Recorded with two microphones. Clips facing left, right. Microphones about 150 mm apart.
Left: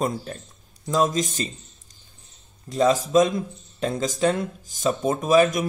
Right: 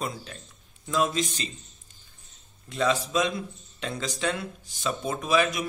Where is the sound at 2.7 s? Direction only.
40° left (ahead or behind).